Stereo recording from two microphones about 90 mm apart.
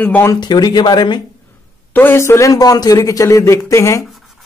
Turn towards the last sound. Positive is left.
turn(degrees=0)  # may be behind; listen again after turning